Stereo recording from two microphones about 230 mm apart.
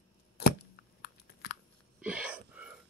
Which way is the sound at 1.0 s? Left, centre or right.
Left.